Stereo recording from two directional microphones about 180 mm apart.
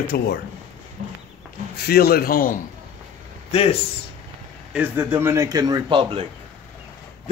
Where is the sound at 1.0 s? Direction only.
40° right (ahead or behind).